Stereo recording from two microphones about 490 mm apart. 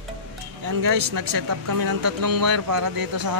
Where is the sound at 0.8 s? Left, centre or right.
Right.